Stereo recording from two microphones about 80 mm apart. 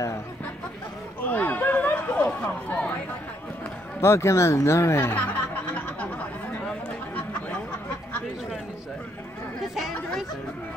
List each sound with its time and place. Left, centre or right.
1.2 s chatter: left
4.0 s speech: left
5.8 s a sound: centre